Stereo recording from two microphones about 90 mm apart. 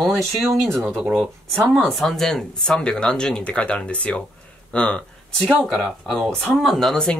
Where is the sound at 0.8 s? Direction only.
15° right (ahead or behind).